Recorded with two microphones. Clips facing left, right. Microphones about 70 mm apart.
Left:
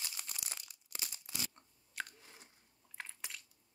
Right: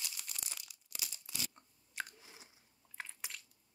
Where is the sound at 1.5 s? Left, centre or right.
Centre.